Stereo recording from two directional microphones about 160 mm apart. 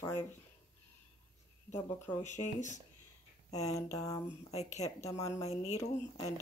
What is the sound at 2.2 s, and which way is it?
Speech, 45° left (ahead or behind).